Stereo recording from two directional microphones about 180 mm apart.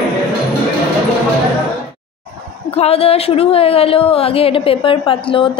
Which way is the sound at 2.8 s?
35° left (ahead or behind).